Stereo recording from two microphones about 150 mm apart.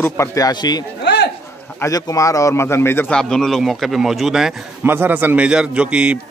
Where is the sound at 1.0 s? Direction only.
90° left.